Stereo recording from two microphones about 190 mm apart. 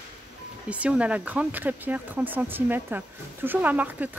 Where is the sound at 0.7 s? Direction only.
5° right (ahead or behind).